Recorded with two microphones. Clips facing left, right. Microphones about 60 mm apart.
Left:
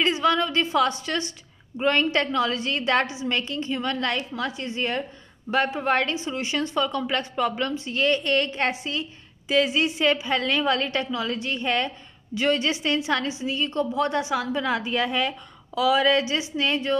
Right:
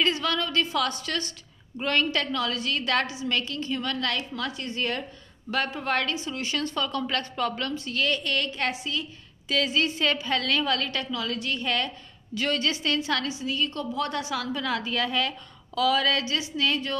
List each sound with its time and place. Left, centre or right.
0.0 s a woman's voice: centre